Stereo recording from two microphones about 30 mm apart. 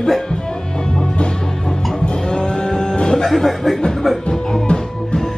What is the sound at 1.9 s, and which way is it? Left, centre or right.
Music, left.